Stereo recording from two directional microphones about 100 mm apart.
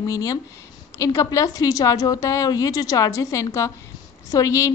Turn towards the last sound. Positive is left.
turn(degrees=30)  # may be behind; listen again after turning